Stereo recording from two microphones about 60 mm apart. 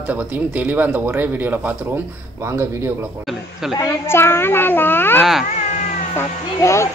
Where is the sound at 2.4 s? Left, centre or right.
Right.